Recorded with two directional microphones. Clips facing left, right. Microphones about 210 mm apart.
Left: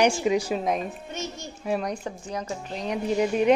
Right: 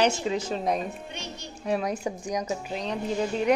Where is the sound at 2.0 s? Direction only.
10° right (ahead or behind).